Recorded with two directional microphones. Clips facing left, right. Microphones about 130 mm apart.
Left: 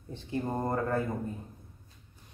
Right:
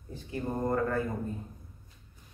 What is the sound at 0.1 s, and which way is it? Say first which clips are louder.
Speech: left 2 dB; 25° left (ahead or behind).